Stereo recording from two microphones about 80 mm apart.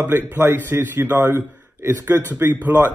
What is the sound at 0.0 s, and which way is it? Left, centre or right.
A man's voice, right.